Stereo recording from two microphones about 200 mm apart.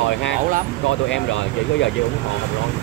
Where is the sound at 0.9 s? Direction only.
75° left (ahead or behind).